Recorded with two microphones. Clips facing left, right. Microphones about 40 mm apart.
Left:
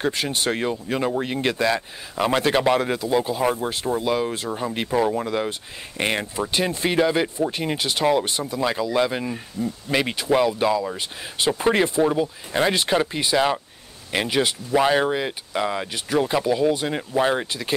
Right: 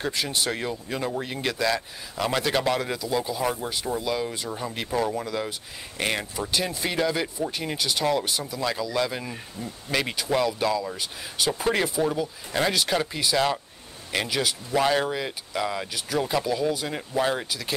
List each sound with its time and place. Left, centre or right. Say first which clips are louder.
0.0 s speech: left 4 dB; left
9.2 s speech: left 8 dB; centre; by 17.7 s left